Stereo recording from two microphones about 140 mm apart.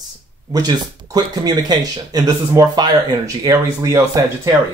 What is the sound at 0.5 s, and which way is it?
Speech, 25° right (ahead or behind).